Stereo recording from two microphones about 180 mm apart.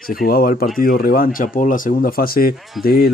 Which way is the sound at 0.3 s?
55° left (ahead or behind).